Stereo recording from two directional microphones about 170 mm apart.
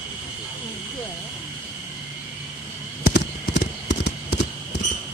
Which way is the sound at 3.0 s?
80° left.